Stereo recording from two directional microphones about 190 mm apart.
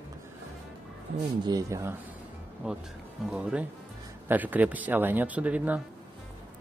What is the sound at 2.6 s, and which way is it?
Speech, 5° right (ahead or behind).